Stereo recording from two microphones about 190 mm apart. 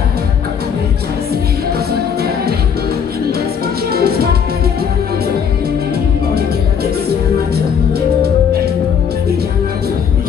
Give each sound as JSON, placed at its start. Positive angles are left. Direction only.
{"t": 3.9, "sound": "music", "side_deg": -55}